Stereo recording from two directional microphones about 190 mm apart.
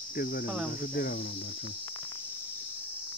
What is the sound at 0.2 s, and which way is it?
Cricket, 55° left (ahead or behind).